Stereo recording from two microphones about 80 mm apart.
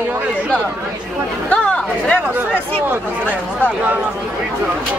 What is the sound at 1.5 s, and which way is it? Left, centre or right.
Chatter, centre.